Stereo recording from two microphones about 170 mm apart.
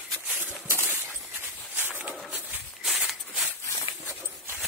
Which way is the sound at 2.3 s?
10° right (ahead or behind).